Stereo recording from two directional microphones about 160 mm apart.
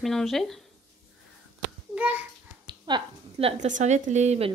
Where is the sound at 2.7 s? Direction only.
30° right (ahead or behind).